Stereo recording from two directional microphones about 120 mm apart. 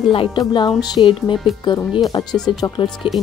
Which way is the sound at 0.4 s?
35° left (ahead or behind).